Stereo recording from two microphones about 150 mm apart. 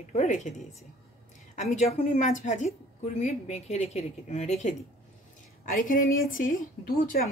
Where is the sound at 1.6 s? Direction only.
50° left (ahead or behind).